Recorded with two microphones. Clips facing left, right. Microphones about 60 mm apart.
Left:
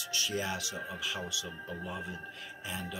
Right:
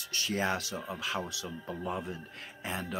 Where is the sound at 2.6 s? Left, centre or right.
Right.